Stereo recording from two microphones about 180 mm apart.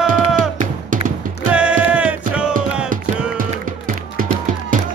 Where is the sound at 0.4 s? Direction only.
45° right (ahead or behind).